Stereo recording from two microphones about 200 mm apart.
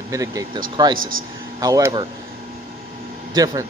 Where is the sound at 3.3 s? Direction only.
15° right (ahead or behind).